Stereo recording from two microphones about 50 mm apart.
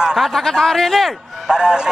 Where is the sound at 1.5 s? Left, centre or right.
Centre.